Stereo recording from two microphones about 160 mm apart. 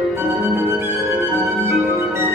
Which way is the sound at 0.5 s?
20° right (ahead or behind).